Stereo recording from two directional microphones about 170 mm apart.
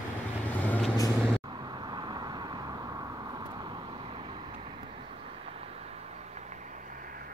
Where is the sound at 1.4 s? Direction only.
25° right (ahead or behind).